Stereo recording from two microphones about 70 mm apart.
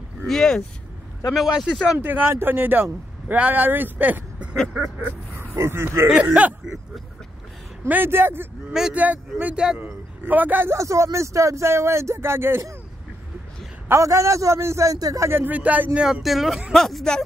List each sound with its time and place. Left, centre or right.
0.3 s speech: centre
1.3 s speech: centre
2.0 s speech: right
6.3 s speech: centre
7.9 s speech: right
8.9 s a man's voice: right
10.8 s speech: right
13.9 s a man's voice: right
15.2 s speech: right
16.0 s speech: centre